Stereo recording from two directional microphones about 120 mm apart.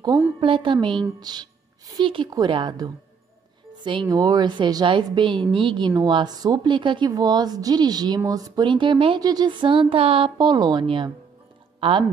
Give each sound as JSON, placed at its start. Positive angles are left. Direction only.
{"t": 0.4, "sound": "a woman's voice", "side_deg": -45}